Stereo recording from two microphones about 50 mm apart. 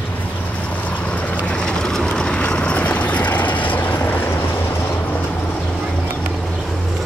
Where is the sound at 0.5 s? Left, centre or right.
Left.